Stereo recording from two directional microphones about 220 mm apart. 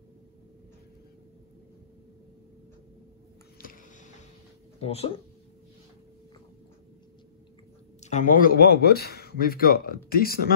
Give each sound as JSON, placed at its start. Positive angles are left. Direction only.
{"t": 3.6, "sound": "a sound", "side_deg": 40}
{"t": 4.7, "sound": "speech", "side_deg": 25}
{"t": 8.0, "sound": "speech", "side_deg": 35}